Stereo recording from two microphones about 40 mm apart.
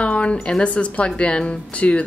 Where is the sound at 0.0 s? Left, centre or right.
Left.